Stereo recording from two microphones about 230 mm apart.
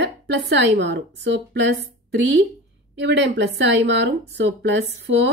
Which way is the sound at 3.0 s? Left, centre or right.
Right.